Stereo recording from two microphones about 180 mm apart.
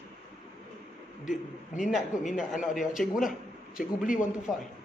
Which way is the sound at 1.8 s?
Centre (ahead or behind).